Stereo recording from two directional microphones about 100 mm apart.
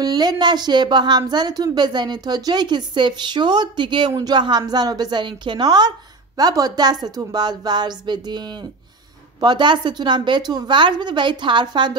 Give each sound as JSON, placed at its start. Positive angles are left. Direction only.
{"t": 0.0, "sound": "a woman's voice", "side_deg": -45}
{"t": 9.4, "sound": "a woman's voice", "side_deg": -50}